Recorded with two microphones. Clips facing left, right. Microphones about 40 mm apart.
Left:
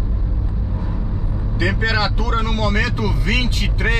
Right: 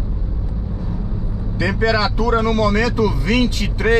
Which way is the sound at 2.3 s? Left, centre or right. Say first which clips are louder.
Right 6 dB; centre.